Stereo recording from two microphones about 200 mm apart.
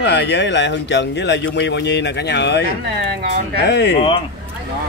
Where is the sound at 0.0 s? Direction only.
60° left (ahead or behind).